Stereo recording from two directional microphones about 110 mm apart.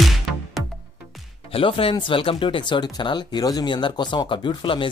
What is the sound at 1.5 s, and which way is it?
Speech, 55° left (ahead or behind).